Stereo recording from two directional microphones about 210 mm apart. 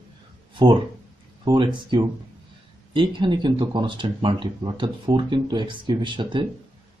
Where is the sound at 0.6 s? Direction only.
20° right (ahead or behind).